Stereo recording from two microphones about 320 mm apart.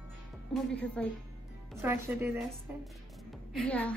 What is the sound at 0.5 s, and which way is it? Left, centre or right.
A woman's voice, centre.